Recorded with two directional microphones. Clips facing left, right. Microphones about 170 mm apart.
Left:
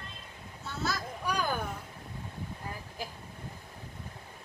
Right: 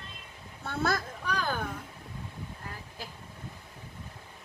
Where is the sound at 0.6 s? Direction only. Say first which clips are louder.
Right 5 dB; 55° right (ahead or behind).